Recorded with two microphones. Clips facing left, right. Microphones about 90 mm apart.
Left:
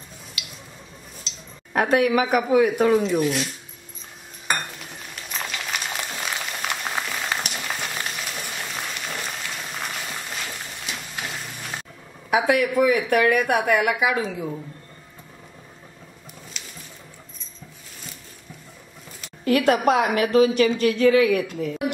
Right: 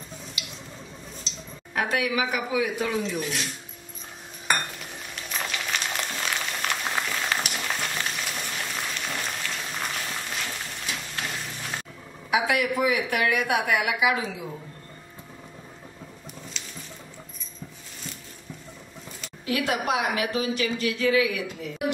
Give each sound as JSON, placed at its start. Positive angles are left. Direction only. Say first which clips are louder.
{"t": 1.7, "sound": "speech", "louder": "left 7 dB", "side_deg": 45}
{"t": 3.2, "sound": "speech", "louder": "left 8 dB", "side_deg": 0}
{"t": 4.9, "sound": "a sound", "louder": "even", "side_deg": 0}
{"t": 12.3, "sound": "speech", "louder": "left 4 dB", "side_deg": 45}
{"t": 19.4, "sound": "speech", "louder": "left 8 dB", "side_deg": 50}